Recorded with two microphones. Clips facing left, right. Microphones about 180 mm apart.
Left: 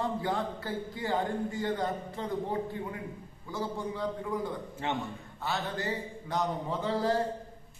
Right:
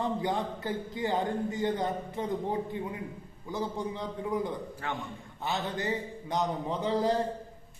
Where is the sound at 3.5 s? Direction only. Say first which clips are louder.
Right 1 dB; 20° right (ahead or behind).